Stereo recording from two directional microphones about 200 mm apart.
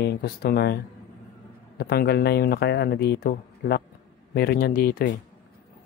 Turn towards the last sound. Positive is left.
turn(degrees=50)  # may be behind; listen again after turning